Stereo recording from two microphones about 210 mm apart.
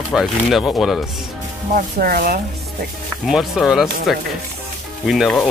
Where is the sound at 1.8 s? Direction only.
45° right (ahead or behind).